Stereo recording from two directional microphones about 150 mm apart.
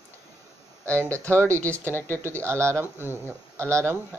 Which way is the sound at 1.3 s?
20° right (ahead or behind).